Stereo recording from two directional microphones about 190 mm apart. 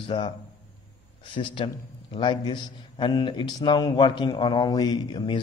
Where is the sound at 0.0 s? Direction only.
25° left (ahead or behind).